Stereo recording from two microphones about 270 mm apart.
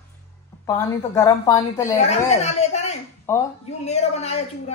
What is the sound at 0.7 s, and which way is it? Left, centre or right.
A woman's voice, centre.